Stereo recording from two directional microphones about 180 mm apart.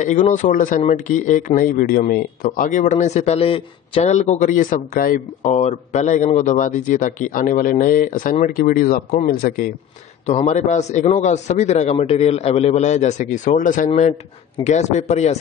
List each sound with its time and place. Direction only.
0.0 s speech: 45° left (ahead or behind)
10.2 s a man's voice: 35° left (ahead or behind)